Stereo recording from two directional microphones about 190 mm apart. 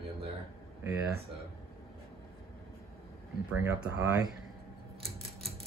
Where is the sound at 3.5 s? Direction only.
10° right (ahead or behind).